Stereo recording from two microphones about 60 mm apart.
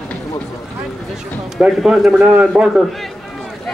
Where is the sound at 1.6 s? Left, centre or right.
Centre.